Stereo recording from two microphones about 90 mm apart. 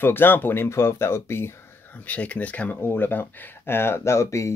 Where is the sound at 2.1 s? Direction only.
15° left (ahead or behind).